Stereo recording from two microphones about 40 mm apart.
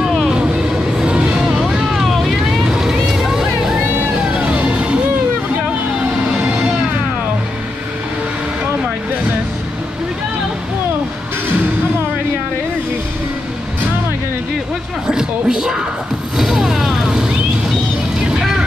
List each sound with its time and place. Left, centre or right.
1.0 s vehicle: right
4.4 s music: right
15.0 s a sound: centre
16.5 s vehicle: centre